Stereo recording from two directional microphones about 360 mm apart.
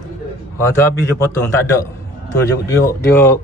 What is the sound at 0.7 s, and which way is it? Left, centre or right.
Speech, centre.